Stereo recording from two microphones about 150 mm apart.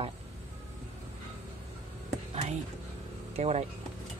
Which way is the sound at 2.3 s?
45° right (ahead or behind).